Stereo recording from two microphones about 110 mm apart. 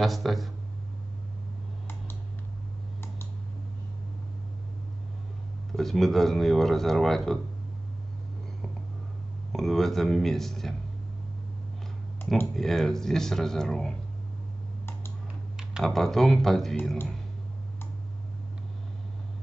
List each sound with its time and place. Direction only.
0.0 s speech: centre (ahead or behind)
5.8 s speech: centre (ahead or behind)
9.5 s speech: centre (ahead or behind)
12.2 s computer keyboard: 20° left (ahead or behind)
12.5 s speech: 5° left (ahead or behind)
15.5 s speech: centre (ahead or behind)